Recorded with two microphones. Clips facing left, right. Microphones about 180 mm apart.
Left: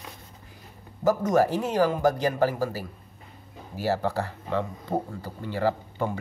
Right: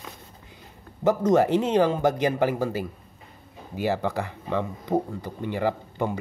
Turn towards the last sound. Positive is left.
turn(degrees=-15)  # may be behind; listen again after turning